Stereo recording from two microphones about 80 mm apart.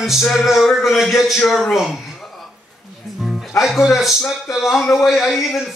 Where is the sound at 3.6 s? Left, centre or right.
Centre.